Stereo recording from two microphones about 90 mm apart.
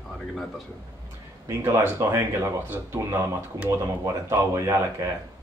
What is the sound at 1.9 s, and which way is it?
Speech, 30° right (ahead or behind).